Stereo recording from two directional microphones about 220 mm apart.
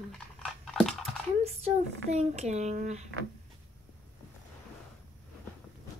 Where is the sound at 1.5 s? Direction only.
30° right (ahead or behind).